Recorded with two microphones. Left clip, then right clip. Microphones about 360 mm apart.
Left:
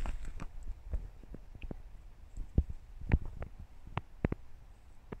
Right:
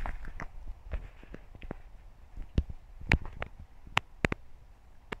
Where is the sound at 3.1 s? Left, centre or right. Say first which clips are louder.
Right 11 dB; right.